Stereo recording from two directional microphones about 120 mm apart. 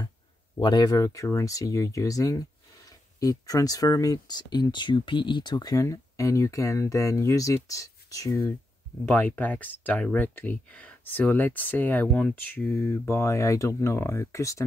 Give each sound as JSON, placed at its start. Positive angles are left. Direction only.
{"t": 0.6, "sound": "speech", "side_deg": 35}
{"t": 9.0, "sound": "speech", "side_deg": 15}